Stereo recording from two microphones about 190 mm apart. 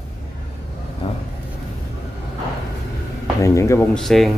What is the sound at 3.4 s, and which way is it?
Speech, 15° left (ahead or behind).